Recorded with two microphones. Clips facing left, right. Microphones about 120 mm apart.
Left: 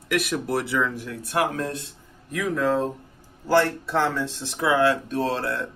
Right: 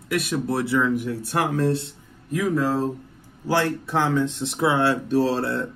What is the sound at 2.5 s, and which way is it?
Speech, 5° right (ahead or behind).